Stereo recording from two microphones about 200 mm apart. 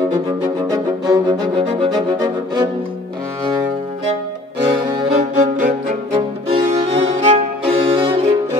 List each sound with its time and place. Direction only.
0.7 s music: 20° right (ahead or behind)
4.6 s music: 25° right (ahead or behind)
5.4 s music: 35° right (ahead or behind)